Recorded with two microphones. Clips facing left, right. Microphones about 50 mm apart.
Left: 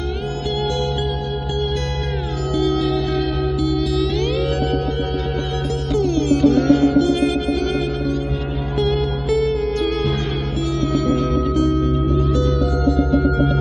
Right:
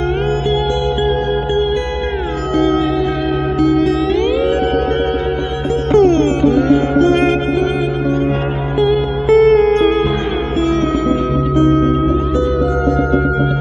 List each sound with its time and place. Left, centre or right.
3.6 s music: right
4.1 s music: right
5.9 s music: right
6.4 s music: right
7.0 s music: right
8.7 s music: right
9.3 s music: right
11.1 s music: right
11.7 s music: right